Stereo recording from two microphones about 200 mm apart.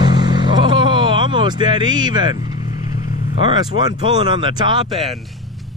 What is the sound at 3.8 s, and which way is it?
Speech, 20° right (ahead or behind).